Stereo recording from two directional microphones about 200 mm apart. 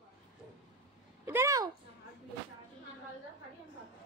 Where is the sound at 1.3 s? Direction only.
15° right (ahead or behind).